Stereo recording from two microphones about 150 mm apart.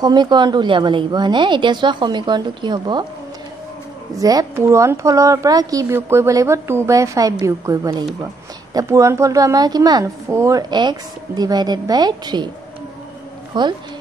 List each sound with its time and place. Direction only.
0.0 s a woman's voice: 30° right (ahead or behind)
4.2 s a woman's voice: 25° right (ahead or behind)
13.5 s a woman's voice: 30° right (ahead or behind)